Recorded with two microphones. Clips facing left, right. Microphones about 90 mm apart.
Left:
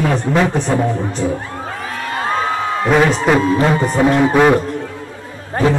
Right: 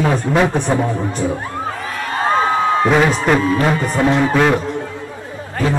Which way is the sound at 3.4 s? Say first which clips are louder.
Left 2 dB; 25° left (ahead or behind).